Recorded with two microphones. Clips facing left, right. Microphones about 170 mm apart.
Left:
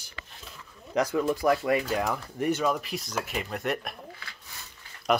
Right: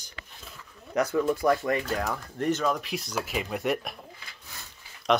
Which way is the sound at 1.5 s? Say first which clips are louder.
Left 1 dB; 15° left (ahead or behind).